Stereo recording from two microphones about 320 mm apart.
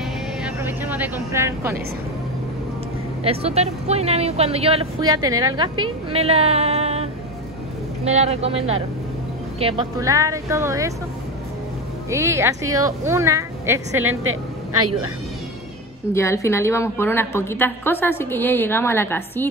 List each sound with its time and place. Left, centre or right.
0.0 s vehicle: centre
1.3 s a woman's voice: centre
3.3 s a woman's voice: centre
12.1 s a woman's voice: centre
14.0 s speech: right
16.1 s a woman's voice: centre